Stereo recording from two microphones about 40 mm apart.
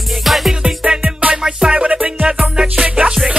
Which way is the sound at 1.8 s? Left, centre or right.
Right.